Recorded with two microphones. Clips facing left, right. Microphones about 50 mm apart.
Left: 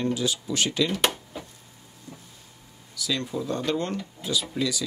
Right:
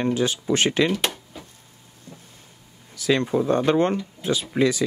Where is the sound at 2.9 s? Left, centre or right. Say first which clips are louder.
Right 8 dB; right.